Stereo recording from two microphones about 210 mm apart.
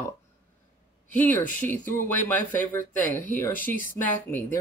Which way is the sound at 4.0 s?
10° left (ahead or behind).